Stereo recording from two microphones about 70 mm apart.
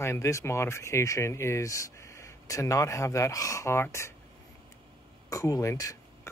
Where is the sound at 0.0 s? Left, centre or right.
Left.